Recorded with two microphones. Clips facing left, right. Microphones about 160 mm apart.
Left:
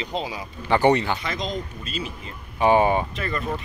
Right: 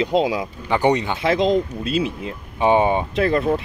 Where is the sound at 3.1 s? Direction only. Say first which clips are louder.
Right 10 dB; 75° right (ahead or behind).